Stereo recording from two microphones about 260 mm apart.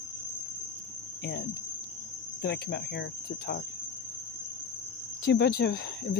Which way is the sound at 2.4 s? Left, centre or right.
Left.